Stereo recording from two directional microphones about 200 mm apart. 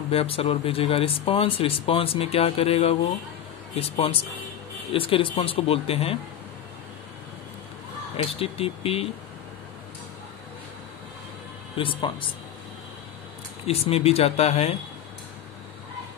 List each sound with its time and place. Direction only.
0.1 s speech: 30° left (ahead or behind)
8.4 s speech: 30° left (ahead or behind)
11.7 s speech: 25° left (ahead or behind)
13.7 s speech: 30° left (ahead or behind)